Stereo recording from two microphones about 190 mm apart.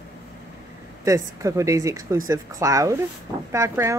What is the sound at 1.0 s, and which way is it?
Speech, 15° right (ahead or behind).